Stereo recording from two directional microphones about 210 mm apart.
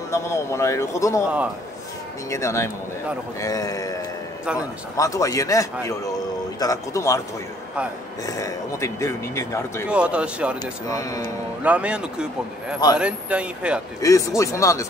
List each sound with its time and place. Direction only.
0.1 s a man's voice: 15° left (ahead or behind)
2.3 s a man's voice: 15° left (ahead or behind)
8.3 s a man's voice: 15° left (ahead or behind)
9.8 s speech: 5° right (ahead or behind)
10.6 s a man's voice: 15° left (ahead or behind)
11.6 s speech: 5° right (ahead or behind)
14.0 s a man's voice: 15° left (ahead or behind)